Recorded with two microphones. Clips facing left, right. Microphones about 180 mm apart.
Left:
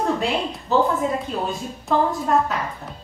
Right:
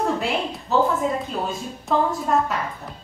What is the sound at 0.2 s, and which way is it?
A woman's voice, centre (ahead or behind).